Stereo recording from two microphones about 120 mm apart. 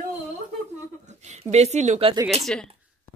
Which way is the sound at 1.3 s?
70° right (ahead or behind).